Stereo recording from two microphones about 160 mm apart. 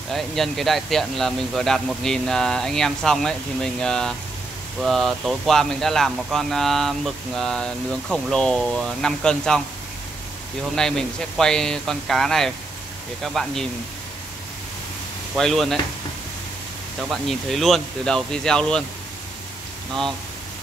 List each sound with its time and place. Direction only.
0.1 s speech: centre (ahead or behind)
10.8 s speech: 5° left (ahead or behind)
15.3 s speech: centre (ahead or behind)
17.1 s speech: centre (ahead or behind)